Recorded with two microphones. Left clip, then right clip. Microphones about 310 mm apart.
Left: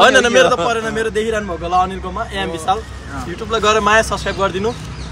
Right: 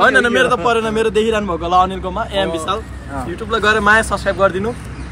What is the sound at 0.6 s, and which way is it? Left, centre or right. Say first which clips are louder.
A man's voice: right 3 dB; centre.